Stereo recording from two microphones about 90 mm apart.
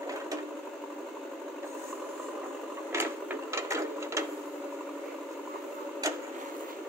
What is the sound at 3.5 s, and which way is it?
Sewing machine, 35° right (ahead or behind).